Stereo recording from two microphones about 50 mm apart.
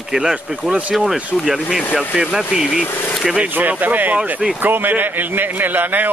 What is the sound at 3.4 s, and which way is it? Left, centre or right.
A man's voice, right.